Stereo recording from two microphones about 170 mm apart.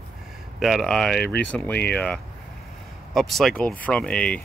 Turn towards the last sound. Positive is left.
turn(degrees=5)  # may be behind; listen again after turning